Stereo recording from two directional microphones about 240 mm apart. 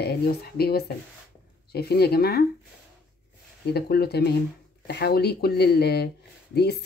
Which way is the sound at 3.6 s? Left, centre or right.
Left.